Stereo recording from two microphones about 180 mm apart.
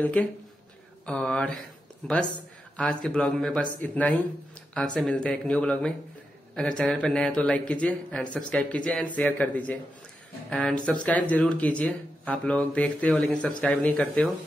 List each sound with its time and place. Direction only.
0.0 s speech: 10° left (ahead or behind)